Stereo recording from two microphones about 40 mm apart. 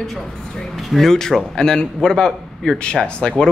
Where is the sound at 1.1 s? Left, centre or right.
Centre.